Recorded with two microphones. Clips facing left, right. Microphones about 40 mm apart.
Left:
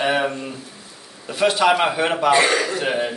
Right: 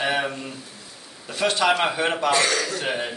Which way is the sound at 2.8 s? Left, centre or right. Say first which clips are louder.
Left 5 dB; centre.